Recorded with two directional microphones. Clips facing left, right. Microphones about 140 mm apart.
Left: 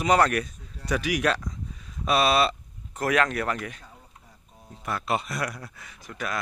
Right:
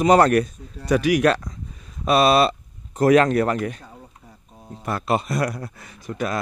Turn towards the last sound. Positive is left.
turn(degrees=-30)  # may be behind; listen again after turning